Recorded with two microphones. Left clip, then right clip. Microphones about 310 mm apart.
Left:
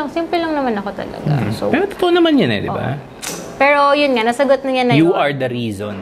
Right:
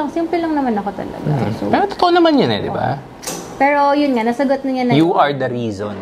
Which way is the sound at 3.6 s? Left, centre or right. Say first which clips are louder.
Left 2 dB; left.